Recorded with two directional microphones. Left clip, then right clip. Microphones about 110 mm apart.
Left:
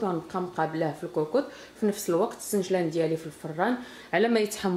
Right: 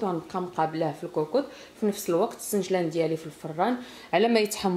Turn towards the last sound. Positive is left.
turn(degrees=-15)  # may be behind; listen again after turning